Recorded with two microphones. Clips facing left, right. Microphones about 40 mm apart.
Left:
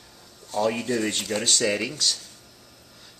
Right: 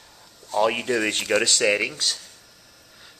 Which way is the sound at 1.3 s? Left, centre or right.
Right.